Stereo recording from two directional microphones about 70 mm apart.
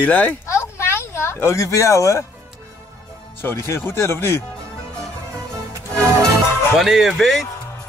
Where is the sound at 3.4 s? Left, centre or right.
Left.